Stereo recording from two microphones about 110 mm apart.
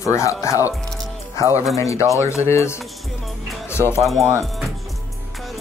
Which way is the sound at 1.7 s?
30° left (ahead or behind).